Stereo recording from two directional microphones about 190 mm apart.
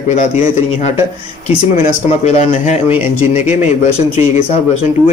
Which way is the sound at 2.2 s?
40° left (ahead or behind).